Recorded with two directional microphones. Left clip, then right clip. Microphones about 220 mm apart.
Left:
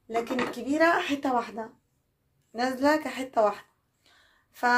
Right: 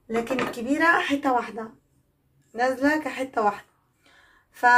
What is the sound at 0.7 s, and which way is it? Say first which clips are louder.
A woman's voice: right 3 dB; 30° left (ahead or behind).